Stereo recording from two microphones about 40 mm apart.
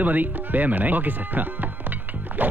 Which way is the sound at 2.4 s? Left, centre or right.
Right.